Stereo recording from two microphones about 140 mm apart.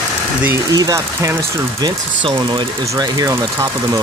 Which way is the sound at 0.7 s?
25° right (ahead or behind).